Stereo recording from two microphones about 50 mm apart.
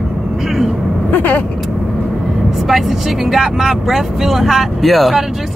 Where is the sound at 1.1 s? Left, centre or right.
Left.